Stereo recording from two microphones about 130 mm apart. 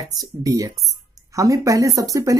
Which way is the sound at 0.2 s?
25° right (ahead or behind).